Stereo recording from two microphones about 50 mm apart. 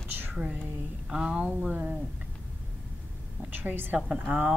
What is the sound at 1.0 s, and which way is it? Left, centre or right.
Speech, centre.